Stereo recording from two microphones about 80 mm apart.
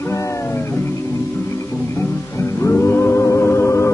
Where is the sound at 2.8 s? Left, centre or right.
Left.